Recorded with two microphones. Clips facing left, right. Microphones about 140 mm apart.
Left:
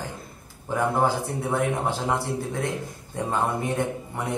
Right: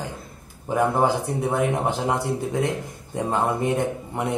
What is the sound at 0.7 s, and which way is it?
Speech, 20° right (ahead or behind).